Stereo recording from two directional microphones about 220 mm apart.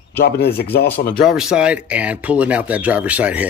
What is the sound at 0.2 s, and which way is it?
Speech, 45° left (ahead or behind).